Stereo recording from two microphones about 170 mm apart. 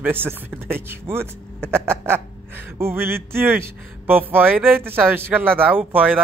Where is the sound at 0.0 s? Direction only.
10° right (ahead or behind).